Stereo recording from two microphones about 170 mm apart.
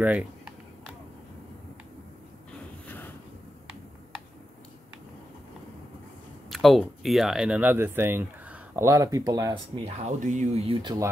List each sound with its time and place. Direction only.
0.0 s speech: 10° right (ahead or behind)
6.5 s speech: centre (ahead or behind); by 9.6 s 20° right (ahead or behind)
9.8 s speech: 40° right (ahead or behind)
10.8 s speech: 25° right (ahead or behind)